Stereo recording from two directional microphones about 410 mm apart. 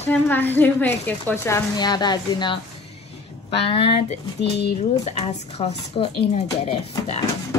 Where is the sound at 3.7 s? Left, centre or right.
Centre.